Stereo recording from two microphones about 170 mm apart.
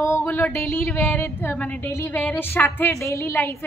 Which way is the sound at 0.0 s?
15° left (ahead or behind).